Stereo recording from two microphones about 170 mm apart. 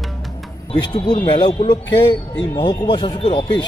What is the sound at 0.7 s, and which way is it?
Speech, 25° left (ahead or behind).